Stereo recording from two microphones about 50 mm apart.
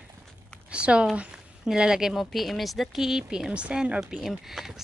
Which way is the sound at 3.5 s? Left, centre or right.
Right.